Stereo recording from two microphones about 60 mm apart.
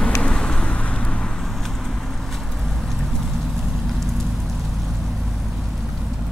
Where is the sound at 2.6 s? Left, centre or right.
Centre.